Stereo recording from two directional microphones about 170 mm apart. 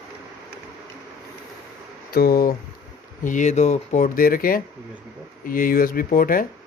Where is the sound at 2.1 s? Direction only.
60° left (ahead or behind).